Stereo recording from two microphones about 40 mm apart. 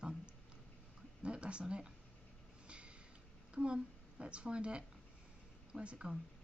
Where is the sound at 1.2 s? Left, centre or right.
Right.